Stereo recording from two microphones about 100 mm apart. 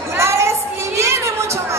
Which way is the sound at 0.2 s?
25° right (ahead or behind).